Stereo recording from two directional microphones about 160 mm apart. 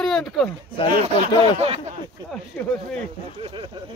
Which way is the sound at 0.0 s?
5° left (ahead or behind).